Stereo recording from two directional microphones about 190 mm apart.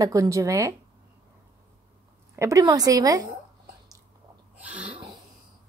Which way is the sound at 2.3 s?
15° right (ahead or behind).